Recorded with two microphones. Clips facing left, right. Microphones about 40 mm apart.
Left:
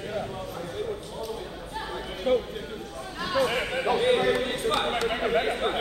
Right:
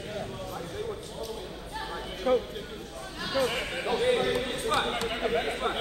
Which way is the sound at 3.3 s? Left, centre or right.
Centre.